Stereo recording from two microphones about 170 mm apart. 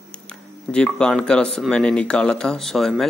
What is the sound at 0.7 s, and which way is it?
Speech, 5° left (ahead or behind).